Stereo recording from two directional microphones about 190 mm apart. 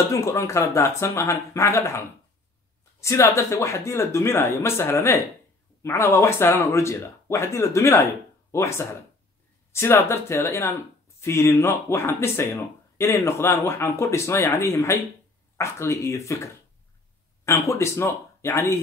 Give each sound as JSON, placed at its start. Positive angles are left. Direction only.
{"t": 0.1, "sound": "speech", "side_deg": 15}
{"t": 17.5, "sound": "speech", "side_deg": 15}